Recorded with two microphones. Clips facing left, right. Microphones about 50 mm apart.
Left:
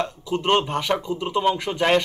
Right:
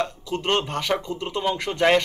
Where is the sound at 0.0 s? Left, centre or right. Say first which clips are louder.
Left 2 dB; left.